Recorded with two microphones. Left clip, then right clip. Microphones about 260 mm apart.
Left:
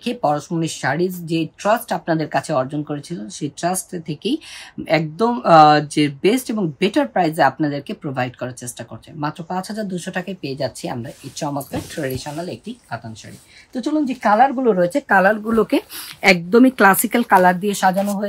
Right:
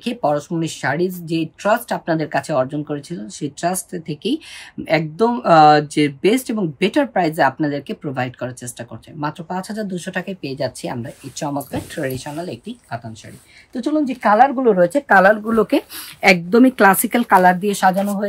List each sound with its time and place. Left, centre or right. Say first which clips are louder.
0.0 s speech: even; centre